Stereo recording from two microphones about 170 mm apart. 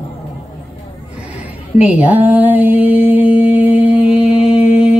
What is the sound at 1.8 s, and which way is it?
Mantra, 10° right (ahead or behind).